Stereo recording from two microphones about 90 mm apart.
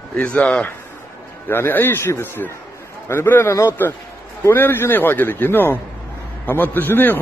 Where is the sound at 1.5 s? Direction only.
25° left (ahead or behind).